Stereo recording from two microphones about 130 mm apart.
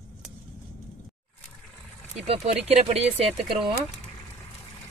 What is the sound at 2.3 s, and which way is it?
Speech, 55° right (ahead or behind).